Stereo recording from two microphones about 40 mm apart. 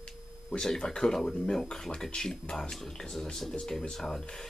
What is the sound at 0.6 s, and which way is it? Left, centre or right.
Speech, centre.